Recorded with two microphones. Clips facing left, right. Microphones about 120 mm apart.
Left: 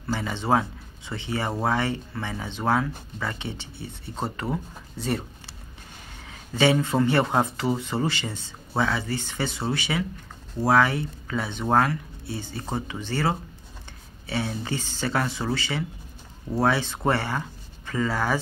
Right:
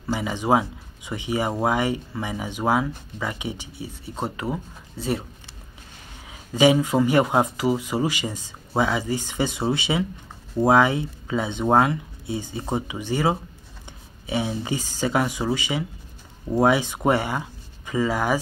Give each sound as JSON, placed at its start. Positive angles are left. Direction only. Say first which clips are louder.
{"t": 0.0, "sound": "speech", "louder": "right 3 dB", "side_deg": -10}
{"t": 6.2, "sound": "speech", "louder": "right 4 dB", "side_deg": -10}